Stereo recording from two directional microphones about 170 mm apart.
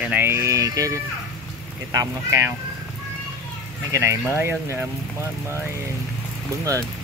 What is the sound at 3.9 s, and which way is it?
Speech, 15° right (ahead or behind).